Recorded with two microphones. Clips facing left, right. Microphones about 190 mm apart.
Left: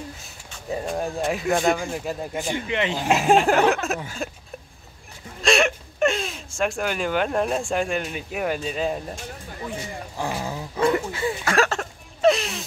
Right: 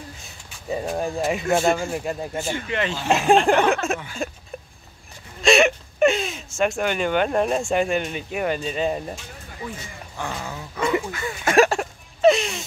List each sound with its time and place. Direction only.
0.7 s speech: 5° right (ahead or behind)
2.3 s speech: 15° left (ahead or behind)
3.1 s speech: centre (ahead or behind)
5.4 s speech: centre (ahead or behind)
10.2 s dog: 35° left (ahead or behind)
10.8 s speech: centre (ahead or behind)
11.1 s speech: 30° left (ahead or behind)
11.4 s a sound: 15° right (ahead or behind)
12.2 s a sound: centre (ahead or behind)